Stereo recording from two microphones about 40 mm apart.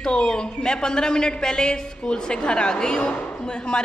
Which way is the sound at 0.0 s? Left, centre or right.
Centre.